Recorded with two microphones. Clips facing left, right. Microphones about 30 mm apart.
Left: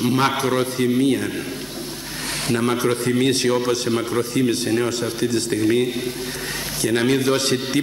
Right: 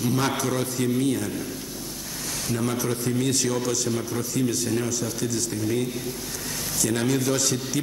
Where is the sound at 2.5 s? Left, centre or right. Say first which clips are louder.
Left 7 dB; left.